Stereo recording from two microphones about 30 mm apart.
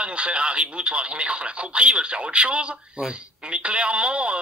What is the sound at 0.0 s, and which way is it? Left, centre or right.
Speech, right.